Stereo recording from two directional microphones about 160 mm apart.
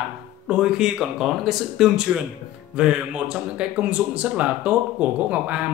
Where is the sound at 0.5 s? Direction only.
5° right (ahead or behind).